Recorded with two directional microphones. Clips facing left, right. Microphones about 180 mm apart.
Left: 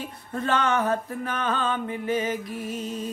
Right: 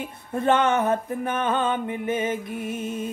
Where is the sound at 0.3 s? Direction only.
15° right (ahead or behind).